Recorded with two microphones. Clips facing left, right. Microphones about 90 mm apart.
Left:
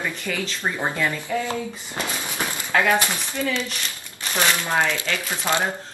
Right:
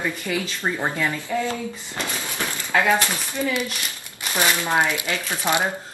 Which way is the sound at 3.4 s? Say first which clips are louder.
Right 1 dB; 15° right (ahead or behind).